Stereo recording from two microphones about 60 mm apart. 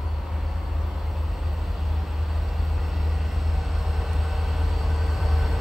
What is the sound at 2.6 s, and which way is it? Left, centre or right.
Train, centre.